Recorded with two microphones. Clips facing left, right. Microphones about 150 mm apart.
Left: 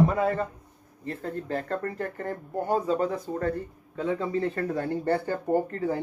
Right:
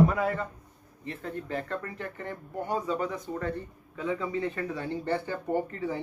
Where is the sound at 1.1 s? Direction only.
40° left (ahead or behind).